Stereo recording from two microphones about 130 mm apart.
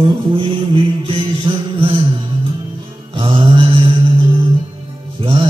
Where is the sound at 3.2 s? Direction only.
40° right (ahead or behind).